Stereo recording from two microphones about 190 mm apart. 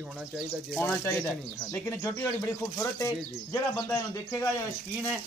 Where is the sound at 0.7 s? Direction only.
10° left (ahead or behind).